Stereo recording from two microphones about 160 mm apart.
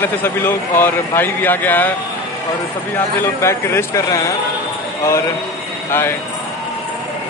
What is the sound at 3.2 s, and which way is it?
A man's voice, 15° left (ahead or behind).